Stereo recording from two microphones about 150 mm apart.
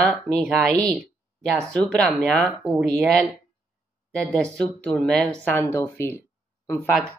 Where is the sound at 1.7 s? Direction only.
5° left (ahead or behind).